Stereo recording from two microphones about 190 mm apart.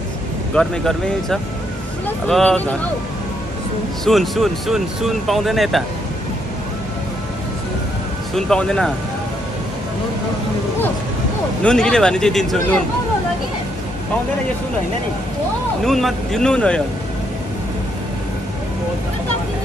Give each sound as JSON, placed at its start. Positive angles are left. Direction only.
{"t": 0.6, "sound": "speech", "side_deg": 0}
{"t": 4.0, "sound": "speech", "side_deg": 0}
{"t": 8.4, "sound": "speech", "side_deg": 5}
{"t": 11.6, "sound": "speech", "side_deg": 5}
{"t": 15.8, "sound": "speech", "side_deg": 0}